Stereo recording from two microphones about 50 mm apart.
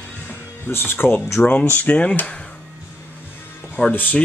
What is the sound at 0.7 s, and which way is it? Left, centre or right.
Speech, left.